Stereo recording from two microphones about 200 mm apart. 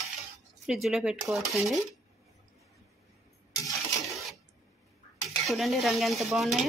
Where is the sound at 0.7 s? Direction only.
Centre (ahead or behind).